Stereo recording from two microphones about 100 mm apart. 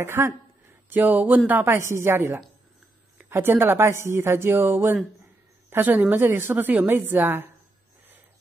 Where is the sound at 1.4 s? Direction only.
20° right (ahead or behind).